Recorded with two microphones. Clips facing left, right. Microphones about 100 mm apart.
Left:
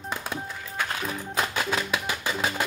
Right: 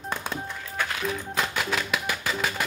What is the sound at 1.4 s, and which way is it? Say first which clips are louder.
Music: left 2 dB; 25° left (ahead or behind).